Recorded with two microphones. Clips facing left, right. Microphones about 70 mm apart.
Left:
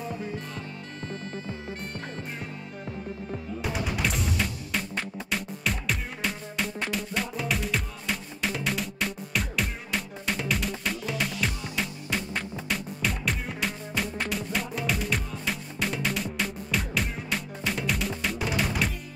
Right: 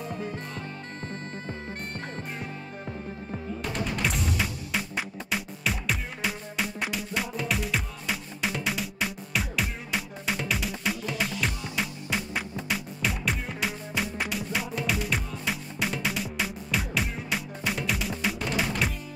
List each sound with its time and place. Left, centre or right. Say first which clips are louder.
1.0 s bagpipes: left 2 dB; right
3.6 s music: even; centre